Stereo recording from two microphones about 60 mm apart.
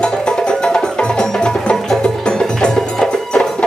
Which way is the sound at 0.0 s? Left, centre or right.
Centre.